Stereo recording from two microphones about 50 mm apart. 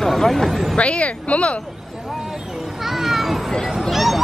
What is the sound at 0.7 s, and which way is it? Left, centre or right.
Speech, left.